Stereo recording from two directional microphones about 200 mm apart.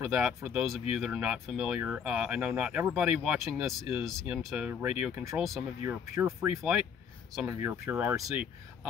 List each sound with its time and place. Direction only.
0.0 s speech: 5° right (ahead or behind)